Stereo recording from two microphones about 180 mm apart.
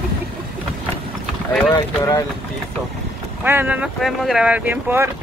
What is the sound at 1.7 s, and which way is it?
Speech, 20° left (ahead or behind).